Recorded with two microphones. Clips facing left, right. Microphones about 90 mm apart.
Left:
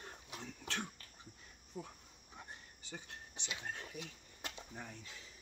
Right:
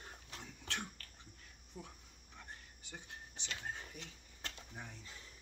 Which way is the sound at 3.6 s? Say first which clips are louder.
Even; centre (ahead or behind).